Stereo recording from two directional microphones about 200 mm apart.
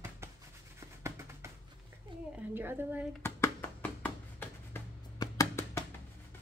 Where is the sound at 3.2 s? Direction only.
10° left (ahead or behind).